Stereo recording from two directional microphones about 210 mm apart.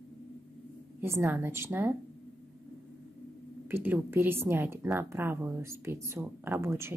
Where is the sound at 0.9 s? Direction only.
10° right (ahead or behind).